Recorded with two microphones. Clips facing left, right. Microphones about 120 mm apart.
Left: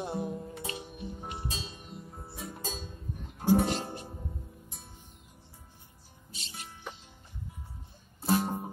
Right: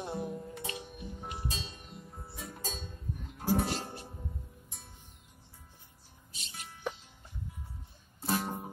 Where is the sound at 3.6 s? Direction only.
20° left (ahead or behind).